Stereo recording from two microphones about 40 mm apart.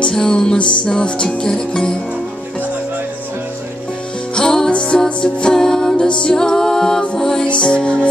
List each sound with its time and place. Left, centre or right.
0.0 s music: centre
4.4 s music: centre
7.4 s music: left